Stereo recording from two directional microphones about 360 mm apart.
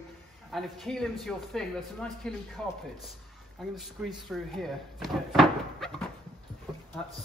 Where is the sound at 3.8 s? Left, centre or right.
Centre.